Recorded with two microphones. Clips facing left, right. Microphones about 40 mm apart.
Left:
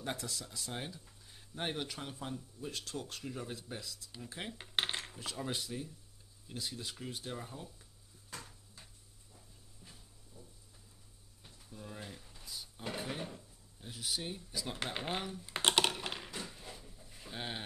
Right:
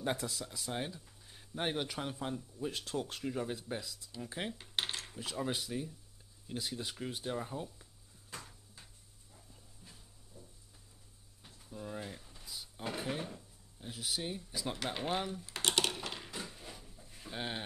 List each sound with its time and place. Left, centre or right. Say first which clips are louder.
0.0 s speech: right 4 dB; centre
4.6 s coin: left 2 dB; left
5.1 s speech: right 3 dB; centre
11.4 s a sound: right 4 dB; centre
12.8 s drawer open or close: right 2 dB; centre
15.0 s speech: right 6 dB; centre
15.4 s computer keyboard: left 7 dB; centre
16.3 s a sound: even; centre